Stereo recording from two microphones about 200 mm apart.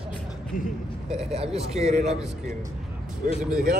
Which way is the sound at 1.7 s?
35° right (ahead or behind).